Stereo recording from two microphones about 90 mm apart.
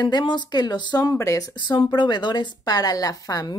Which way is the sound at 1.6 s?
60° left (ahead or behind).